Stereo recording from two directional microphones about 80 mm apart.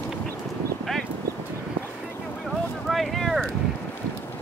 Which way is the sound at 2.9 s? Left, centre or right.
Centre.